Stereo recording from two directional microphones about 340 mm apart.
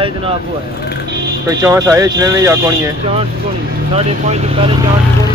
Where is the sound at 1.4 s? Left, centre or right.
Centre.